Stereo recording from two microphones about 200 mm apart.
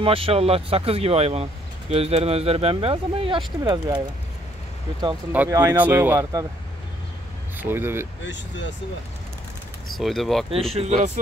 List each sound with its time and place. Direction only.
0.0 s speech: 25° right (ahead or behind)
5.3 s speech: 10° right (ahead or behind)
7.5 s speech: 10° right (ahead or behind)
8.3 s speech: 65° left (ahead or behind)
9.9 s speech: centre (ahead or behind)
10.7 s speech: 35° right (ahead or behind)